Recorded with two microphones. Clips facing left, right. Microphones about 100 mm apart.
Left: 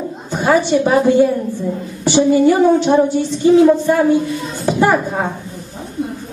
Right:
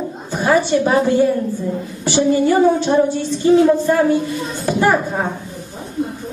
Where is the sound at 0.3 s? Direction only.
15° left (ahead or behind).